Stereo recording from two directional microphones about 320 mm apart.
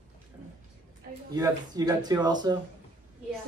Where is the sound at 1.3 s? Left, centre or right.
Centre.